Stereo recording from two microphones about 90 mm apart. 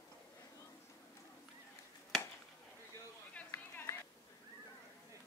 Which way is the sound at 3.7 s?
30° left (ahead or behind).